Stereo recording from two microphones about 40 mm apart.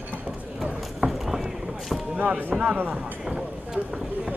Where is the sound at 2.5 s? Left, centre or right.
Centre.